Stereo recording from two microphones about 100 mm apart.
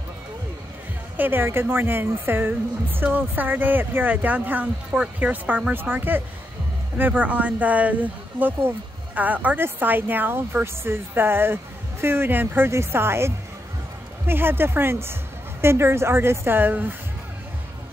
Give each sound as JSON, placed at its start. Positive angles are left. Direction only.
{"t": 1.1, "sound": "speech", "side_deg": -20}